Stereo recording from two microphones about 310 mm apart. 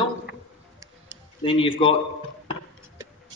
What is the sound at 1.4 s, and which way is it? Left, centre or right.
Speech, centre.